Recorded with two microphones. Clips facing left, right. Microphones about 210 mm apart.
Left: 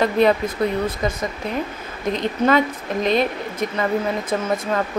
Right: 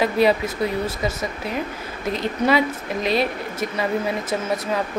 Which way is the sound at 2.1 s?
5° right (ahead or behind).